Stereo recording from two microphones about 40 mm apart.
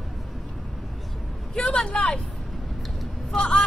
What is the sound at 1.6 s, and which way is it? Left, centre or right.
Speech, left.